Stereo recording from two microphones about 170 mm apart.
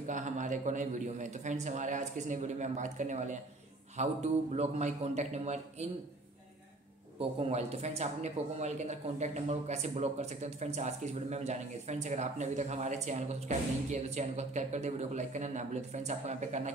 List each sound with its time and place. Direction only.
0.0 s a man's voice: 45° right (ahead or behind)
7.2 s speech: 35° right (ahead or behind)